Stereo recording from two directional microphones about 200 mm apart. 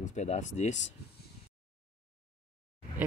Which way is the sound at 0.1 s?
35° left (ahead or behind).